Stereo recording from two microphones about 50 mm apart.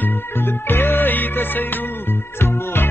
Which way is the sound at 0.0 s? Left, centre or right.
Left.